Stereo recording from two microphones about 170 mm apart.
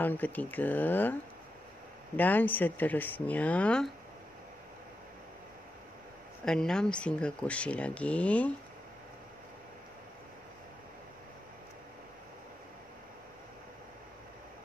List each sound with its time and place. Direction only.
0.0 s speech: 10° left (ahead or behind)
2.1 s speech: 10° left (ahead or behind)
6.4 s speech: 5° left (ahead or behind)